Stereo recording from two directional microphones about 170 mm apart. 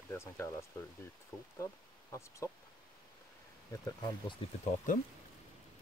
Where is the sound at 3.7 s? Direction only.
20° left (ahead or behind).